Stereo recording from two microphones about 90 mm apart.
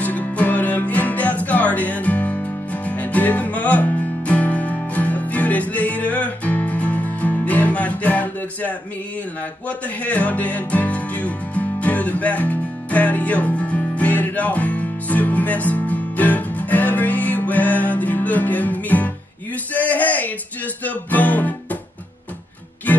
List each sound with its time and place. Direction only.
0.0 s music: 20° left (ahead or behind)
22.9 s music: 20° left (ahead or behind)